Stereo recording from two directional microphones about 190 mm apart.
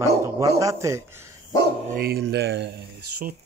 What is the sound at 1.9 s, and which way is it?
Speech, 50° right (ahead or behind).